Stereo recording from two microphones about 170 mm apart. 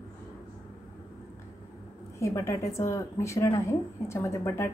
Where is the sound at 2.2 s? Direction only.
20° left (ahead or behind).